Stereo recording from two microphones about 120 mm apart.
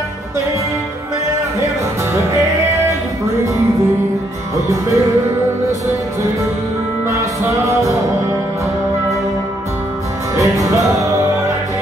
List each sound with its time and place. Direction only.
4.6 s music: 25° right (ahead or behind)
7.6 s music: 25° right (ahead or behind)
10.3 s music: 25° right (ahead or behind)